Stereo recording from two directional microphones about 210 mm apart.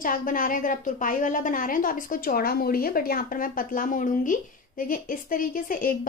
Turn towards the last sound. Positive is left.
turn(degrees=40)  # may be behind; listen again after turning